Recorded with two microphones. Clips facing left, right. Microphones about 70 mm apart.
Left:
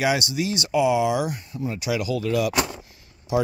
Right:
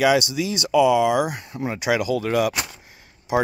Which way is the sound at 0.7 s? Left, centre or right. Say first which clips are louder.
Right 4 dB; right.